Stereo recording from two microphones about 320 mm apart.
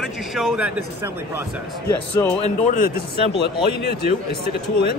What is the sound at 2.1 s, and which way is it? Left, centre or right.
Speech, centre.